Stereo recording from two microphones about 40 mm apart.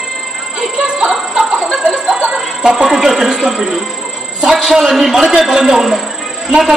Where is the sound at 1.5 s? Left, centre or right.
Centre.